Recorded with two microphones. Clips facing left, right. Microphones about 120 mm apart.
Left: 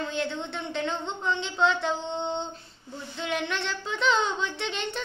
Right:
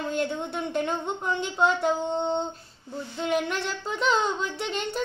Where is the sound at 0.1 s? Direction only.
45° right (ahead or behind).